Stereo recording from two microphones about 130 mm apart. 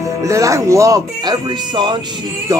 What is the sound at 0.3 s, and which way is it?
Speech, 25° right (ahead or behind).